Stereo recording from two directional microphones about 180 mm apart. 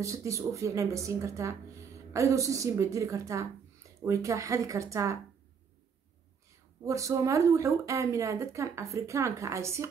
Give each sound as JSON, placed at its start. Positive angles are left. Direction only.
{"t": 0.0, "sound": "speech", "side_deg": -15}
{"t": 6.8, "sound": "speech", "side_deg": -15}